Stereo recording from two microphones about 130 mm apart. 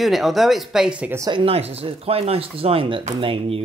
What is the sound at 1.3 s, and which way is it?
Speech, 45° right (ahead or behind).